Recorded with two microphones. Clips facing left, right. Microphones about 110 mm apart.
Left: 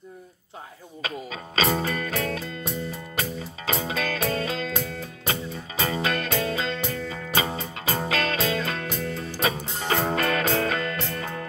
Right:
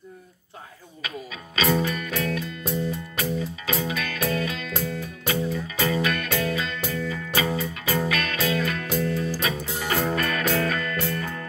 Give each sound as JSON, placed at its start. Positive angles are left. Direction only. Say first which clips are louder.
{"t": 1.0, "sound": "music", "louder": "left 2 dB", "side_deg": 35}
{"t": 6.9, "sound": "music", "louder": "right 2 dB", "side_deg": 40}
{"t": 7.3, "sound": "music", "louder": "right 1 dB", "side_deg": 30}